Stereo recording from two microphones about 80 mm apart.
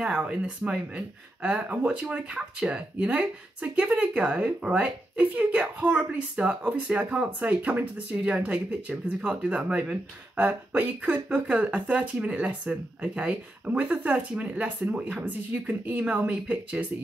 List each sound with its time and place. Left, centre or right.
0.0 s speech: centre